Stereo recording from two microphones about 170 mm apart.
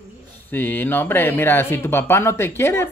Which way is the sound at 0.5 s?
10° left (ahead or behind).